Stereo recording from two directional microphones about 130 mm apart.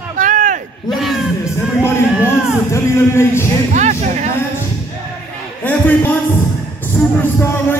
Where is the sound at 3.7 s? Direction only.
65° right (ahead or behind).